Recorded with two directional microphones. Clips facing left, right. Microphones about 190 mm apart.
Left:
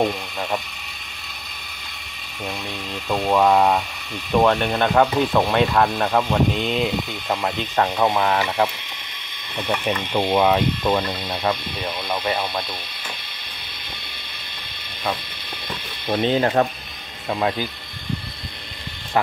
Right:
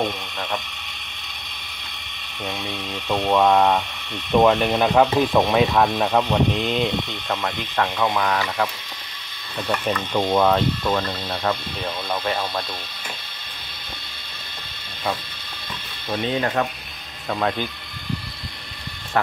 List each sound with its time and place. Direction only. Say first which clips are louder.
0.0 s speech: left 3 dB; 5° left (ahead or behind)
3.1 s speech: even; centre (ahead or behind)
7.7 s speech: left 2 dB; 30° left (ahead or behind)
9.6 s speech: even; 10° left (ahead or behind)
16.1 s speech: left 4 dB; 30° left (ahead or behind)
17.3 s speech: left 1 dB; 10° left (ahead or behind)